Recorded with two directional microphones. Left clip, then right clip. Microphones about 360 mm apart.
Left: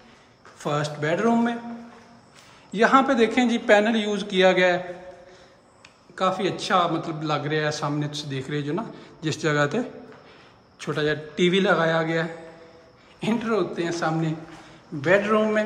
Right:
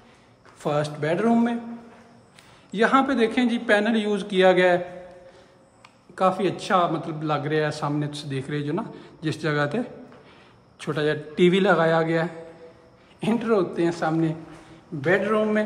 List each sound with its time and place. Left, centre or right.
0.6 s a man's voice: centre
2.7 s a man's voice: centre
6.1 s a man's voice: centre